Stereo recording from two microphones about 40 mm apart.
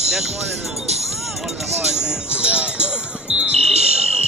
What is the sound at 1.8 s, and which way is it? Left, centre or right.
Basketball bounce, right.